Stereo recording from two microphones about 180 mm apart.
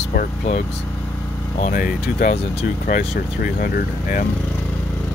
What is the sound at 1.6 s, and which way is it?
Speech, 55° left (ahead or behind).